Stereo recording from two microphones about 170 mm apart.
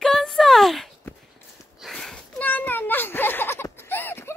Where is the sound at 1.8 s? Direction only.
Centre (ahead or behind).